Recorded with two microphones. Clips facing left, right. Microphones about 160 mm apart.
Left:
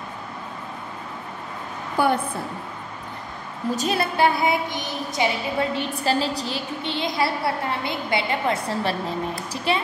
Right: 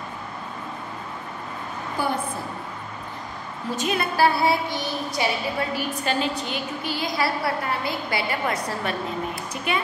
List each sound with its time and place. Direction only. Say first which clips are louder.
2.0 s a sound: left 6 dB; 60° left (ahead or behind)
3.7 s a woman's voice: left 1 dB; 35° left (ahead or behind)
4.2 s a woman's voice: right 1 dB; 20° left (ahead or behind)
5.8 s a woman's voice: left 2 dB; 35° left (ahead or behind)